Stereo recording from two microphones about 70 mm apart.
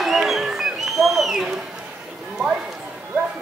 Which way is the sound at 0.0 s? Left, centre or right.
Centre.